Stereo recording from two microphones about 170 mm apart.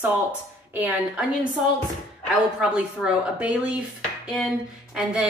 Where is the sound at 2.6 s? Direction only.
5° right (ahead or behind).